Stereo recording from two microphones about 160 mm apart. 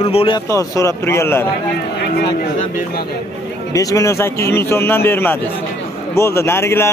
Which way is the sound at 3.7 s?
20° left (ahead or behind).